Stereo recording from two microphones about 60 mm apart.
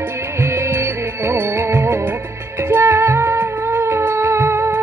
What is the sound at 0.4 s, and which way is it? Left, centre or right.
Music, right.